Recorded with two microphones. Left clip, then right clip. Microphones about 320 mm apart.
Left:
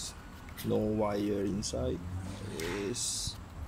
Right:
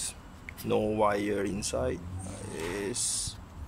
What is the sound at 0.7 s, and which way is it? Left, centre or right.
Speech, right.